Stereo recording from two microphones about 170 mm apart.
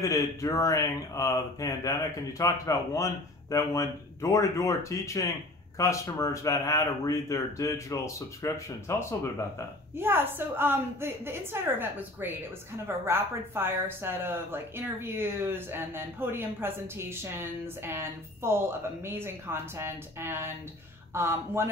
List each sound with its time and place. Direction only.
0.0 s speech: 20° left (ahead or behind)
9.9 s speech: 10° right (ahead or behind)